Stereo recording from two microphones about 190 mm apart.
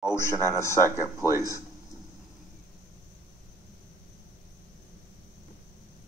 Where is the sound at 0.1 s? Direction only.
15° left (ahead or behind).